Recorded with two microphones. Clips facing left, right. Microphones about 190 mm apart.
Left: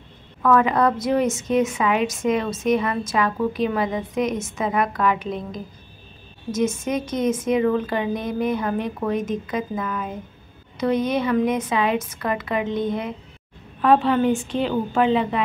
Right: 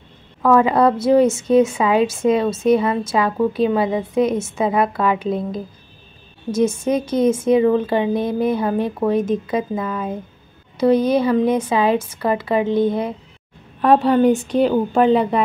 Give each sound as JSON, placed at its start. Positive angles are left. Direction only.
{"t": 0.4, "sound": "a woman's voice", "side_deg": -30}